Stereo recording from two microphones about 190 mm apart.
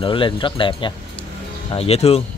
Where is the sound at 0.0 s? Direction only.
25° left (ahead or behind).